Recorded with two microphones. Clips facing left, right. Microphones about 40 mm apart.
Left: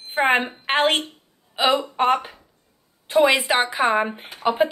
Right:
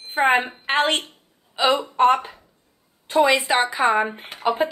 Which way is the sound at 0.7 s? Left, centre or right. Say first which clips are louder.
Left 1 dB; left.